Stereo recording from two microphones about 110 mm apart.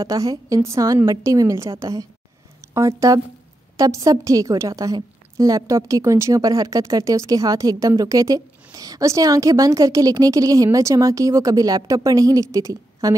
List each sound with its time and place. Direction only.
0.0 s a woman's voice: 35° right (ahead or behind)